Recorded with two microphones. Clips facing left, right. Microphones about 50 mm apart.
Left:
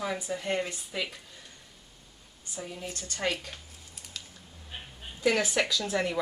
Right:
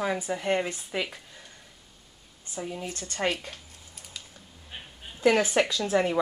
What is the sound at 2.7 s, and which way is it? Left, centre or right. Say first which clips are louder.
Speech: right 3 dB; right.